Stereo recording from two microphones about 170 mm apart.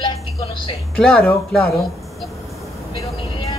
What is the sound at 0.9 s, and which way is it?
Speech, 5° left (ahead or behind).